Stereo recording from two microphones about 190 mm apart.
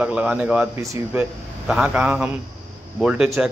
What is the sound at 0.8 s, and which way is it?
Speech, 15° right (ahead or behind).